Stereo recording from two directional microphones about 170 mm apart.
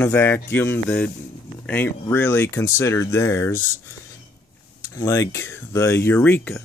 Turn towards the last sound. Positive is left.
turn(degrees=10)  # may be behind; listen again after turning